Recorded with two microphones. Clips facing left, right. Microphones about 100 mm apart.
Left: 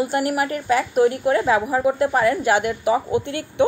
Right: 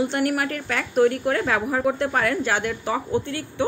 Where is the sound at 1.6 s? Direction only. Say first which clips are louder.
Left 3 dB; 5° left (ahead or behind).